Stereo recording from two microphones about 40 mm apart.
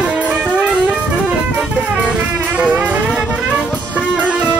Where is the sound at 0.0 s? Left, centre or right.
Right.